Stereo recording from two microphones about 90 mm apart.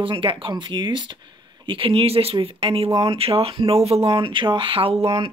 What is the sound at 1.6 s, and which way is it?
Speech, 75° right (ahead or behind).